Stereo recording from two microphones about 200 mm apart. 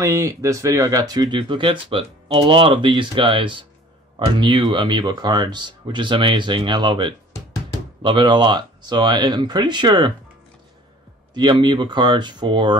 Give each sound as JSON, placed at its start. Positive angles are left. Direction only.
{"t": 0.0, "sound": "speech", "side_deg": -15}
{"t": 11.3, "sound": "speech", "side_deg": -20}